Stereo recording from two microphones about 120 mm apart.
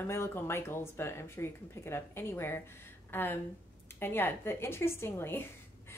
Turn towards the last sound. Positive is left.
turn(degrees=20)  # may be behind; listen again after turning